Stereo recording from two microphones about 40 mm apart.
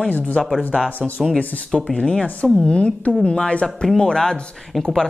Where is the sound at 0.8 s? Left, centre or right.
Centre.